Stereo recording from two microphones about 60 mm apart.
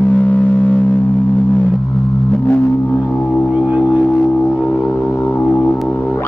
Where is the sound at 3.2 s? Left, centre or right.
Centre.